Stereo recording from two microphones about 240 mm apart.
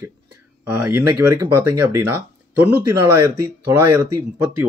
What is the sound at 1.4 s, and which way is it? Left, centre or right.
Speech, right.